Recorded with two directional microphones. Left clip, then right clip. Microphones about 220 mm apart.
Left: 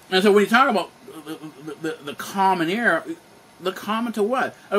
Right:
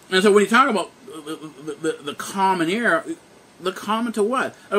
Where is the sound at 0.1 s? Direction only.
10° right (ahead or behind).